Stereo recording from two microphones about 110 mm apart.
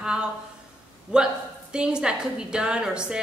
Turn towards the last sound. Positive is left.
turn(degrees=-5)  # may be behind; listen again after turning